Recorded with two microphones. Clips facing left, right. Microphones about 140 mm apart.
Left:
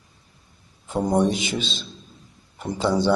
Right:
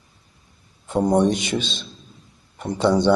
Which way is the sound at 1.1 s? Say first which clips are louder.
Right 1 dB; centre (ahead or behind).